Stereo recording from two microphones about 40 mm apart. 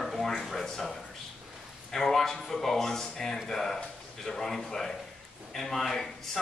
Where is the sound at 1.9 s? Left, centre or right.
Centre.